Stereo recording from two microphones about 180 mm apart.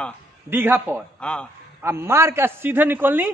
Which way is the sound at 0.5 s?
10° right (ahead or behind).